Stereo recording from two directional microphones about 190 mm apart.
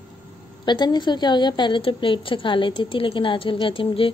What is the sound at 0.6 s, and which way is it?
A woman's voice, 20° left (ahead or behind).